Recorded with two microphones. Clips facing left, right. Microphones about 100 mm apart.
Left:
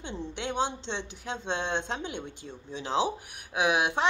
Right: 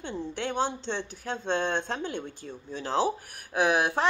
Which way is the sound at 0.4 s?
20° left (ahead or behind).